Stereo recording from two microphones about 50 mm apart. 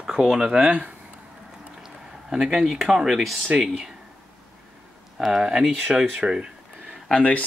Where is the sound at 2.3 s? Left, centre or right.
Centre.